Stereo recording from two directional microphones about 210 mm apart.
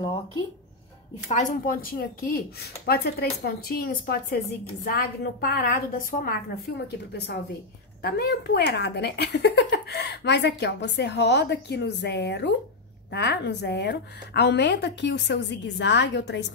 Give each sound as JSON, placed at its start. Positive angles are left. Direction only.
{"t": 1.3, "sound": "speech", "side_deg": 35}
{"t": 8.0, "sound": "a woman's voice", "side_deg": 50}